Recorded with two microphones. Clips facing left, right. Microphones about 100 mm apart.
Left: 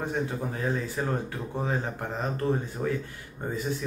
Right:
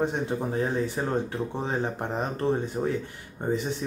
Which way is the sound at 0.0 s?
20° right (ahead or behind).